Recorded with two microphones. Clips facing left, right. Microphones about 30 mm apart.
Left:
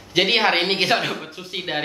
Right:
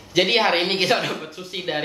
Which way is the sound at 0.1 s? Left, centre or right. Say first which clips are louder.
Even; centre.